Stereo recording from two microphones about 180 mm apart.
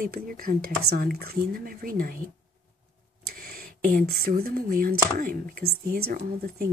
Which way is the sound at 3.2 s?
55° right (ahead or behind).